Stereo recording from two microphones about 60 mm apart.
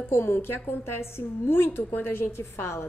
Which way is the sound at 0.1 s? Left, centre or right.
Left.